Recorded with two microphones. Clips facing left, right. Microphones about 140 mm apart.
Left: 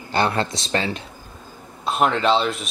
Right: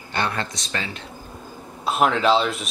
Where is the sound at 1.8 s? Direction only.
Centre (ahead or behind).